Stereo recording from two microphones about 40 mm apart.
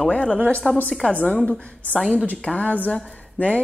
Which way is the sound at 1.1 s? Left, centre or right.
Left.